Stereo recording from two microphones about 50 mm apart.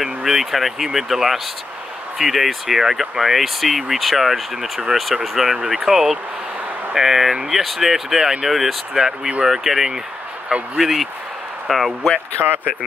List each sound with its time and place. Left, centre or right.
0.0 s speech: centre
12.4 s speech: right